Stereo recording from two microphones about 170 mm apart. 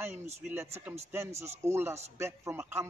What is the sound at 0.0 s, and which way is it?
Speech, 15° right (ahead or behind).